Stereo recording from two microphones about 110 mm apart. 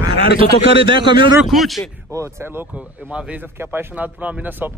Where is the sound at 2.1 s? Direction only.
30° right (ahead or behind).